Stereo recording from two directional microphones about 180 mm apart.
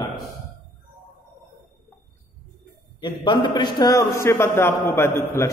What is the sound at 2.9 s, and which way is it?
A man's voice, 25° left (ahead or behind).